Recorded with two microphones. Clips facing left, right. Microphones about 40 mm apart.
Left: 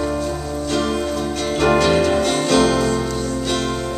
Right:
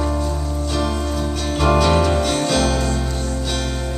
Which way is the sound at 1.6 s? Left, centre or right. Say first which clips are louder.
Left 1 dB; centre.